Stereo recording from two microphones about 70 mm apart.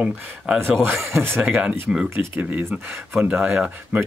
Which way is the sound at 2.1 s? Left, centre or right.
Right.